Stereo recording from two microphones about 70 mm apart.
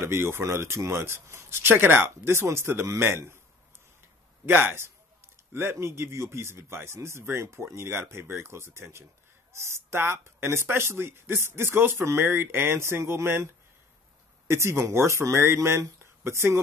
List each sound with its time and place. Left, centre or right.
0.0 s speech: right
4.5 s speech: right
14.5 s speech: right